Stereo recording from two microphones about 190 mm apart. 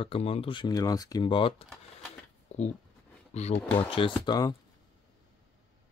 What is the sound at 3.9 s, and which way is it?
Speech, 25° left (ahead or behind).